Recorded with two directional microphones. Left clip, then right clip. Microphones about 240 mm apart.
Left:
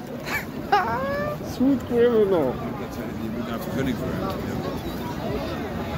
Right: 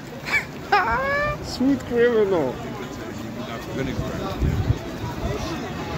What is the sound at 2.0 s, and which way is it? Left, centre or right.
Speech, centre.